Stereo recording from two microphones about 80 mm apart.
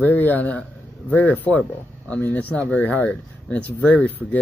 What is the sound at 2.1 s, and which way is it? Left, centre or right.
Speech, centre.